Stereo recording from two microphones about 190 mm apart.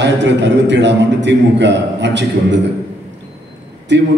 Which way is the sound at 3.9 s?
65° right (ahead or behind).